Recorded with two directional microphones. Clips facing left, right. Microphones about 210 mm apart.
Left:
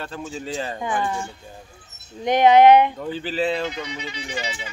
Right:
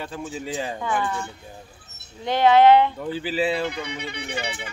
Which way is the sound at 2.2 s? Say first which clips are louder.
Left 2 dB; 20° left (ahead or behind).